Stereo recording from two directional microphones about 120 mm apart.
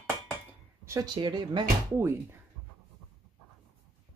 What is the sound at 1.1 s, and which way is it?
Speech, 40° right (ahead or behind).